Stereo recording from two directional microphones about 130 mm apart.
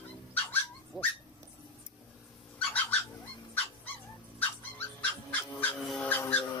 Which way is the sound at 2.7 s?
10° left (ahead or behind).